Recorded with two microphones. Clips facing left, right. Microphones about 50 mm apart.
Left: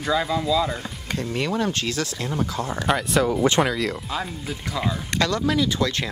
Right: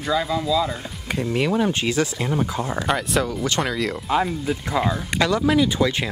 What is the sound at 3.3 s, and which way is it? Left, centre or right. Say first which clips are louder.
Speech: left 5 dB; left.